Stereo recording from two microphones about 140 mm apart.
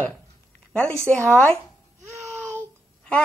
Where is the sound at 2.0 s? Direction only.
20° right (ahead or behind).